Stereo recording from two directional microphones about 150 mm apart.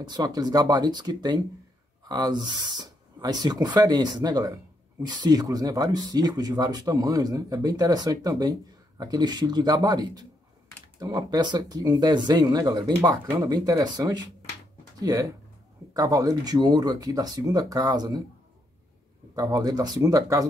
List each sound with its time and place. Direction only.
0.0 s speech: 25° right (ahead or behind)
19.3 s speech: 25° right (ahead or behind)